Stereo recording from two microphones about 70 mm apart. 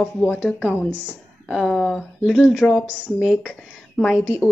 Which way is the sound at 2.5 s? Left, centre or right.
Centre.